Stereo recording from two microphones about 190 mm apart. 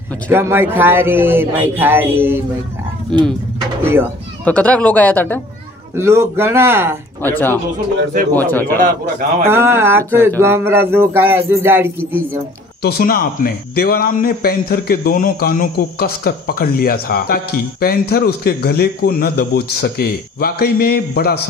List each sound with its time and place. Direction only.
0.3 s speech: 10° right (ahead or behind)
3.1 s speech: 5° left (ahead or behind)
3.8 s speech: 15° right (ahead or behind)
4.5 s speech: 5° left (ahead or behind)
5.9 s speech: 15° right (ahead or behind)
7.2 s speech: 10° left (ahead or behind)
9.5 s speech: 15° right (ahead or behind)
12.8 s speech: 55° left (ahead or behind)